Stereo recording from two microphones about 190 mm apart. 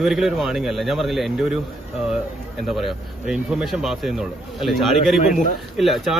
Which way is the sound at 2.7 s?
Centre (ahead or behind).